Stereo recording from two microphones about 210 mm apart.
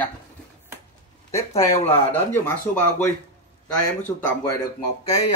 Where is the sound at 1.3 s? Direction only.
15° left (ahead or behind).